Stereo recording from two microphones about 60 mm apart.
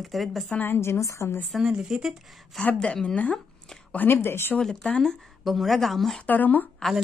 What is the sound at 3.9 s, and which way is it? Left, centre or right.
Speech, left.